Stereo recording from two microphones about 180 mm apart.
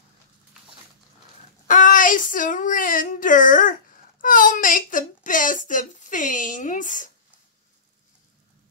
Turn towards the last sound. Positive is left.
turn(degrees=45)  # may be behind; listen again after turning